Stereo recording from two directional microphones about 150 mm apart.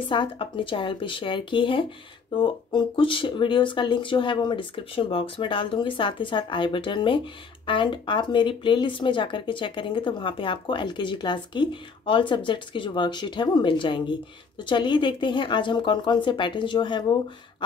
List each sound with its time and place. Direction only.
0.1 s speech: 35° left (ahead or behind)